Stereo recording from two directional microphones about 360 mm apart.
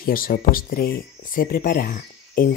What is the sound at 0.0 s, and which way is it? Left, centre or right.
Speech, left.